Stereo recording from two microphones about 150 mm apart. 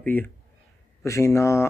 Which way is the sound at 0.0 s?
10° left (ahead or behind).